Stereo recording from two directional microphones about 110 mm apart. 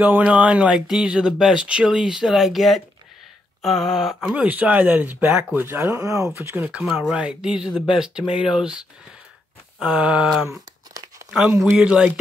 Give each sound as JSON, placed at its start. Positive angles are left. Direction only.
{"t": 0.0, "sound": "speech", "side_deg": -15}
{"t": 6.7, "sound": "speech", "side_deg": -10}
{"t": 10.9, "sound": "crumpling", "side_deg": -35}
{"t": 11.7, "sound": "speech", "side_deg": -5}